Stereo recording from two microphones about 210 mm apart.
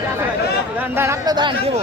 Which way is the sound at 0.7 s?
10° right (ahead or behind).